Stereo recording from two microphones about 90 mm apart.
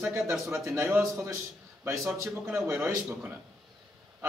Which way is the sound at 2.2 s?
30° right (ahead or behind).